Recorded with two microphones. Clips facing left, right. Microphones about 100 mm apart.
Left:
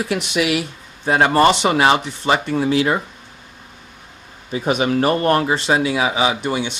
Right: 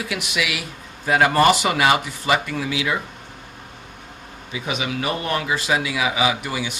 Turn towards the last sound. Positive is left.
turn(degrees=30)  # may be behind; listen again after turning